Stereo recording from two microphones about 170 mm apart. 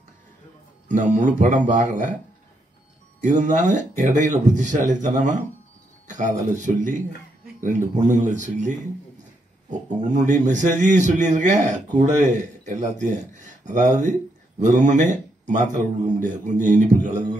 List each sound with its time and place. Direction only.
1.1 s a man's voice: 50° right (ahead or behind)
3.2 s a man's voice: 50° right (ahead or behind)
6.0 s a sound: 45° right (ahead or behind)
6.6 s a man's voice: 50° right (ahead or behind)